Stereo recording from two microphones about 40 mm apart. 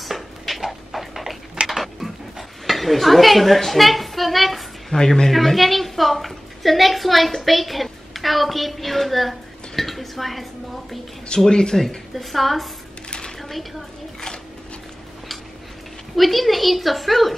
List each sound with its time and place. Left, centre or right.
0.0 s dishes: centre
4.9 s speech: centre
5.3 s a woman's voice: centre
11.2 s speech: centre
11.8 s a woman's voice: centre
13.4 s a sound: centre
16.2 s a woman's voice: centre